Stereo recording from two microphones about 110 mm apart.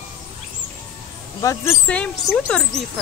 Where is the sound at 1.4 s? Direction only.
30° left (ahead or behind).